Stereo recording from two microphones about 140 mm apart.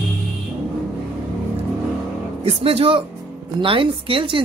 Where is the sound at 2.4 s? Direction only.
45° right (ahead or behind).